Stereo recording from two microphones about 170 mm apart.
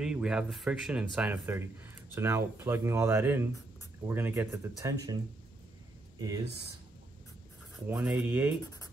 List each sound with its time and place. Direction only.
0.0 s speech: 5° right (ahead or behind); by 6.4 s 20° right (ahead or behind)
7.8 s speech: 10° right (ahead or behind)